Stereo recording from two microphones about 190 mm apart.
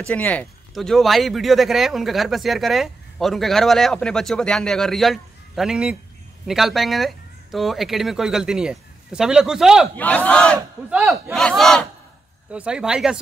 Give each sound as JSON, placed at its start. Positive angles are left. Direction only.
{"t": 0.0, "sound": "speech", "side_deg": 5}
{"t": 9.9, "sound": "battle cry", "side_deg": 10}
{"t": 10.9, "sound": "speech", "side_deg": -5}